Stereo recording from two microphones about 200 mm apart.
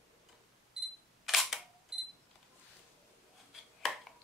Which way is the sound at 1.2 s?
Centre (ahead or behind).